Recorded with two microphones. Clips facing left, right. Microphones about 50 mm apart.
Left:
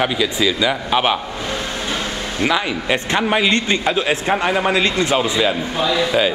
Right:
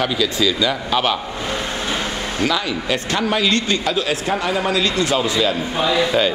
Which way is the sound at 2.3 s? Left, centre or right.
Left.